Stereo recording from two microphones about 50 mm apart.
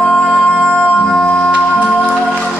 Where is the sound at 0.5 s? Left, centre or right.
Centre.